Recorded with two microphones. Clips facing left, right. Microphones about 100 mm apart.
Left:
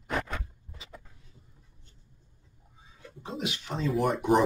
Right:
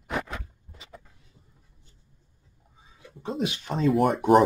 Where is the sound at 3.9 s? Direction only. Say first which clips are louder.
Right 5 dB; 60° right (ahead or behind).